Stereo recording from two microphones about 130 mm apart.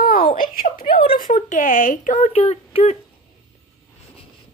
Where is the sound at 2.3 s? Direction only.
50° left (ahead or behind).